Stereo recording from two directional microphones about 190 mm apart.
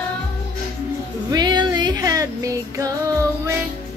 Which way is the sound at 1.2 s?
20° right (ahead or behind).